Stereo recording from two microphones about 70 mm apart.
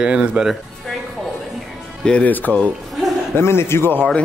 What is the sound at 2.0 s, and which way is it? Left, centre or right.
Speech, centre.